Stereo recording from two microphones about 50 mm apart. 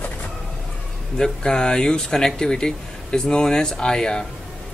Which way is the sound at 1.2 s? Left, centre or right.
Centre.